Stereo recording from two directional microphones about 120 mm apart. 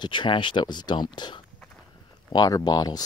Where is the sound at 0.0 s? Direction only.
40° left (ahead or behind).